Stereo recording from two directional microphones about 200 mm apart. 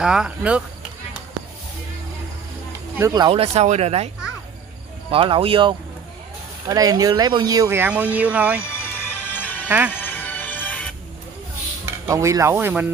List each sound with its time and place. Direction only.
0.0 s speech: 5° right (ahead or behind)
3.0 s speech: 15° right (ahead or behind)
3.3 s speech: 30° right (ahead or behind)
5.1 s speech: 25° right (ahead or behind); by 8.6 s 5° right (ahead or behind)
8.6 s music: 10° left (ahead or behind)
9.7 s speech: 10° right (ahead or behind)
9.9 s music: 10° left (ahead or behind)
11.8 s cutlery: 15° right (ahead or behind)